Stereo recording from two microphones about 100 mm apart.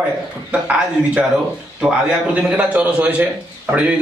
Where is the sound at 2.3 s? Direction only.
15° right (ahead or behind).